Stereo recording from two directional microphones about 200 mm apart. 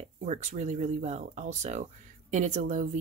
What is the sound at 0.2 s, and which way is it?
Speech, 35° right (ahead or behind).